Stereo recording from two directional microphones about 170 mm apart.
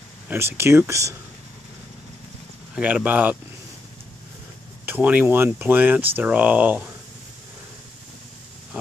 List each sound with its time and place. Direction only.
0.3 s speech: 15° right (ahead or behind)
2.7 s speech: 10° right (ahead or behind)
4.8 s speech: 10° right (ahead or behind)